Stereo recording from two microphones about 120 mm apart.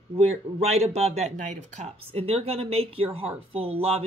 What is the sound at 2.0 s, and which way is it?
A woman's voice, 50° right (ahead or behind).